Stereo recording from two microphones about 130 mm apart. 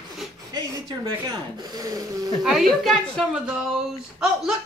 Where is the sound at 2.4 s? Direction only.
Centre (ahead or behind).